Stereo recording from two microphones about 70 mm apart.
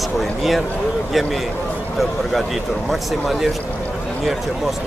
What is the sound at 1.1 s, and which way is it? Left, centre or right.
Speech, centre.